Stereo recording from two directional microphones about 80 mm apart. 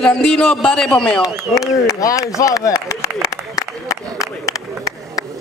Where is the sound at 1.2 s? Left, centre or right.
Left.